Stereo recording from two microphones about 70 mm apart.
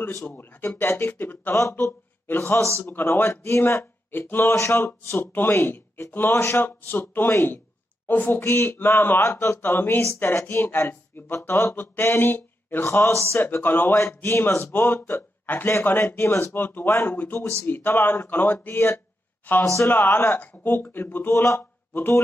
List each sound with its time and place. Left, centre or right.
0.3 s speech: left
1.6 s speech: left
4.8 s speech: left
8.4 s speech: left
12.8 s speech: left
13.3 s speech: left
13.9 s speech: left
14.7 s speech: left
19.6 s speech: left
19.9 s speech: left